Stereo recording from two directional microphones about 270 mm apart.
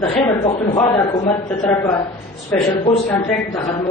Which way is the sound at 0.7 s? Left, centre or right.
Centre.